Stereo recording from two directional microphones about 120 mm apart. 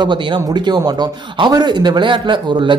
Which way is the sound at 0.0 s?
40° right (ahead or behind).